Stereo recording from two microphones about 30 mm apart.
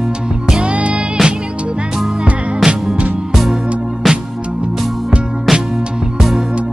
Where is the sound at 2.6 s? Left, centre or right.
Centre.